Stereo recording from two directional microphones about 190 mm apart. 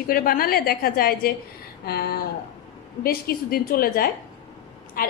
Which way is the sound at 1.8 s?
55° left (ahead or behind).